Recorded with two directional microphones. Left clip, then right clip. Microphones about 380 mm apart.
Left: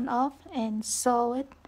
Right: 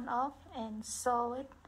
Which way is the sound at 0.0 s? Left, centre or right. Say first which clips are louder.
Left 7 dB; left.